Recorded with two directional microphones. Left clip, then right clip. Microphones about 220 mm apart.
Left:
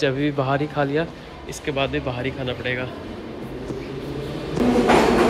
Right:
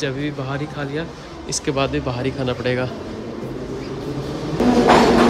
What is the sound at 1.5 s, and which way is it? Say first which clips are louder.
Speech: right 3 dB; 15° right (ahead or behind).